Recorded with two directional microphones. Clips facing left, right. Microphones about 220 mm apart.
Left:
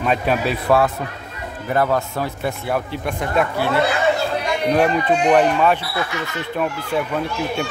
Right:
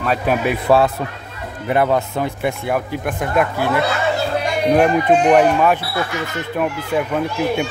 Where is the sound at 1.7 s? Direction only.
20° right (ahead or behind).